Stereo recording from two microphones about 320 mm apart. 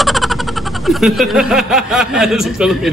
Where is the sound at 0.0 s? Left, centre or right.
Centre.